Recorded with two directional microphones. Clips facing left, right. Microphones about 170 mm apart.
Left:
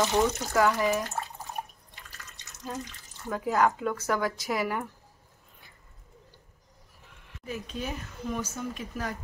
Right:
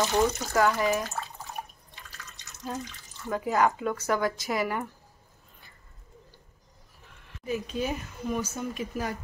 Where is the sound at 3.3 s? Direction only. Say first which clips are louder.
Even; 5° right (ahead or behind).